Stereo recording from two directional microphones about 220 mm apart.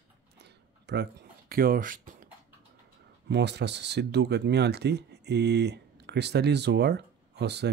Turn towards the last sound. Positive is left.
turn(degrees=-50)  # may be behind; listen again after turning